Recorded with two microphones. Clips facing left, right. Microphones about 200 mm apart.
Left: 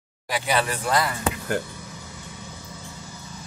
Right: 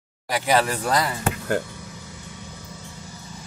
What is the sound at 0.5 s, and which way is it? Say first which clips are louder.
Speech: right 3 dB; 40° right (ahead or behind).